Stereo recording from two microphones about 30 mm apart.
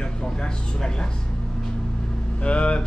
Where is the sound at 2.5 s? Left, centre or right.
Left.